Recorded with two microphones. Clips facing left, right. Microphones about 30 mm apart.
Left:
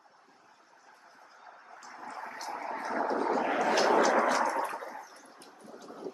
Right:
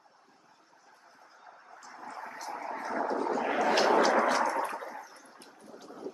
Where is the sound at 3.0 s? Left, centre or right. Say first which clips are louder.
Left 2 dB; left.